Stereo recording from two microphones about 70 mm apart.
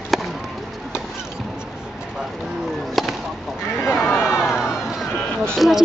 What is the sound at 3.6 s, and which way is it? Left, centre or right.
Speech, left.